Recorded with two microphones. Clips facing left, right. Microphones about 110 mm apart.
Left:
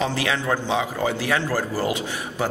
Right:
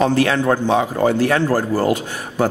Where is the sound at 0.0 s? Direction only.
50° right (ahead or behind).